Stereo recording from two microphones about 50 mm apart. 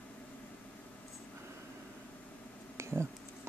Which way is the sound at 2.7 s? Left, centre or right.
Right.